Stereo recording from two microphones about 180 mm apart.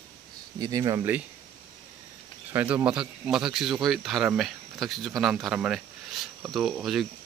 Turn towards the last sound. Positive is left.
turn(degrees=0)  # may be behind; listen again after turning